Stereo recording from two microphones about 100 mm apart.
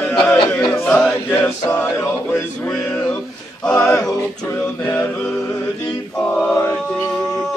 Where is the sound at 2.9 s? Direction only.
25° left (ahead or behind).